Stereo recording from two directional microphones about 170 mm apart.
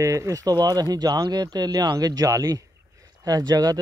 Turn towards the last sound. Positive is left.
turn(degrees=-20)  # may be behind; listen again after turning